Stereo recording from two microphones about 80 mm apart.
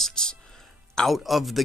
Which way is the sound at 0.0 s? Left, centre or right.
Centre.